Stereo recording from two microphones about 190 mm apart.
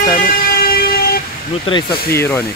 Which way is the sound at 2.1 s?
15° left (ahead or behind).